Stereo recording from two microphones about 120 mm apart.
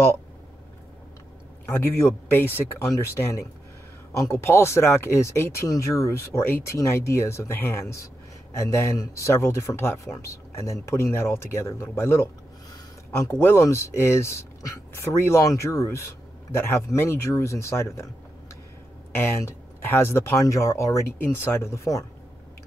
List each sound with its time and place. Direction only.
1.7 s speech: 20° left (ahead or behind)
19.1 s speech: 20° left (ahead or behind)